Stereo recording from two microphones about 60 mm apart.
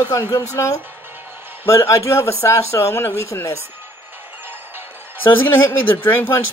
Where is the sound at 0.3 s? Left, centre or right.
Left.